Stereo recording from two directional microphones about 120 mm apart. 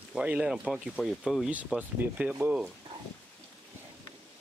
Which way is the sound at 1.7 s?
10° right (ahead or behind).